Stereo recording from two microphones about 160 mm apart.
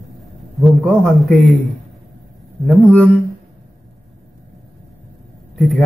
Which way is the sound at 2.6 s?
Centre (ahead or behind).